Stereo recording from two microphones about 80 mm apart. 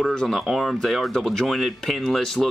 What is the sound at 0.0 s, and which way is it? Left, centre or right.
Speech, centre.